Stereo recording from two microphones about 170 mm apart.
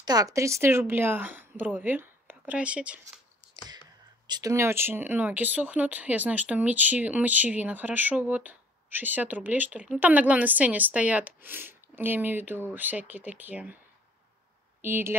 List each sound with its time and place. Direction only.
0.0 s speech: 20° right (ahead or behind)
4.3 s speech: 20° right (ahead or behind)
14.8 s speech: 15° right (ahead or behind)